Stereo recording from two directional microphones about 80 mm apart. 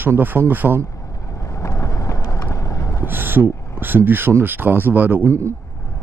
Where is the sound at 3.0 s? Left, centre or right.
Right.